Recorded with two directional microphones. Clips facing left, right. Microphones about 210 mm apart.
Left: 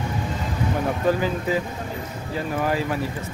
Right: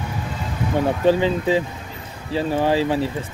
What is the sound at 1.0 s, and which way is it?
Speech, 25° right (ahead or behind).